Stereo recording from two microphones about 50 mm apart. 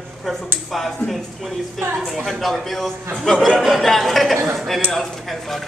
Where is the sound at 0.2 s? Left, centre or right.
Centre.